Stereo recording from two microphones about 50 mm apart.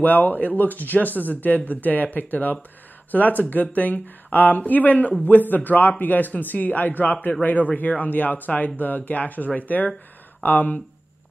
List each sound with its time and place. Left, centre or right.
0.0 s speech: left